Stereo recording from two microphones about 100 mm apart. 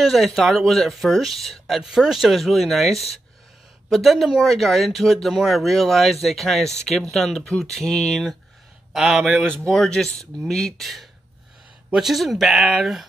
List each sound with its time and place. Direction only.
0.0 s speech: centre (ahead or behind)